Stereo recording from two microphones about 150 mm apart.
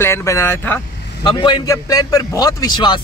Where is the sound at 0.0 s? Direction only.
20° left (ahead or behind).